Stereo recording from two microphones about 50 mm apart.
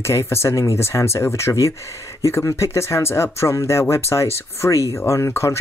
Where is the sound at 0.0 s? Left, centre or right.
Left.